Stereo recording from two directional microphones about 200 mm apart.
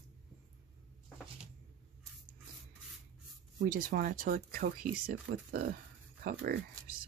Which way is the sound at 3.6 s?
45° right (ahead or behind).